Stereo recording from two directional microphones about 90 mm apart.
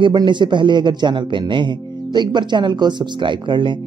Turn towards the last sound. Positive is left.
turn(degrees=-60)  # may be behind; listen again after turning